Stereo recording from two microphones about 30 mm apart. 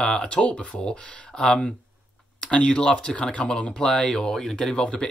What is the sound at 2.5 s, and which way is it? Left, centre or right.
Speech, left.